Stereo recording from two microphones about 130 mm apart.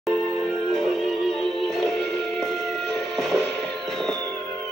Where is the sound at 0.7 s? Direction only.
5° left (ahead or behind).